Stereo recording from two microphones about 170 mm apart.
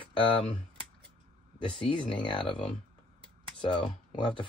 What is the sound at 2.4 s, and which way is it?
Speech, 5° left (ahead or behind).